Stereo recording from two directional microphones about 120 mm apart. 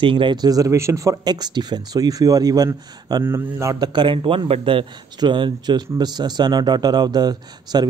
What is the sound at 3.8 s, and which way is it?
Speech, 40° right (ahead or behind).